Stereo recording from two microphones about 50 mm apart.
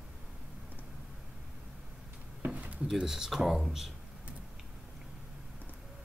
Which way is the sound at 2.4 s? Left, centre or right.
Right.